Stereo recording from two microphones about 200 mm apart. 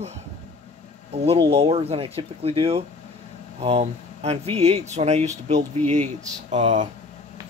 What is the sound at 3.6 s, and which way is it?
Speech, 30° right (ahead or behind).